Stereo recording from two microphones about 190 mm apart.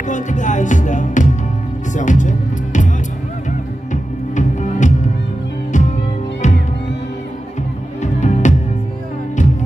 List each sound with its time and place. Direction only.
0.1 s music: 40° left (ahead or behind)
8.0 s music: 40° left (ahead or behind)